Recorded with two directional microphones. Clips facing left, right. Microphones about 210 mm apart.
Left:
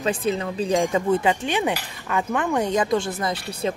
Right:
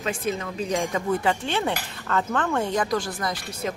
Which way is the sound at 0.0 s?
30° left (ahead or behind).